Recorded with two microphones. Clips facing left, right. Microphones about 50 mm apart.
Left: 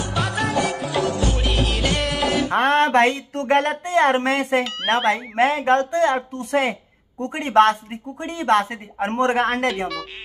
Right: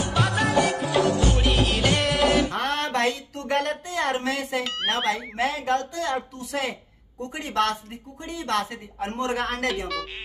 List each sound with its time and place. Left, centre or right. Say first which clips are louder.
0.1 s music: even; centre
2.5 s speech: left 9 dB; left